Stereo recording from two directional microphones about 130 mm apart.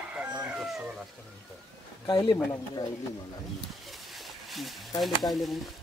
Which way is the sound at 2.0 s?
35° left (ahead or behind).